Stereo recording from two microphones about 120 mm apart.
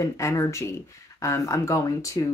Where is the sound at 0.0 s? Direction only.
25° left (ahead or behind).